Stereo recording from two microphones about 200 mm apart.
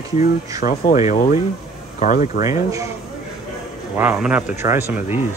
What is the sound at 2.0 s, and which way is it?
Speech, 40° left (ahead or behind).